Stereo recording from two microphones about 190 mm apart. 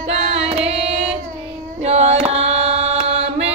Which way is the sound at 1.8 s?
35° right (ahead or behind).